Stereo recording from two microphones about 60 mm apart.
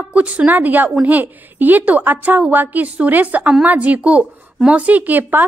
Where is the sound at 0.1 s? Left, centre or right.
Right.